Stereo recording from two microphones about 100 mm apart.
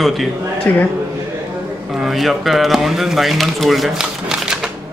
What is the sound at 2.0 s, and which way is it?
Speech, centre (ahead or behind).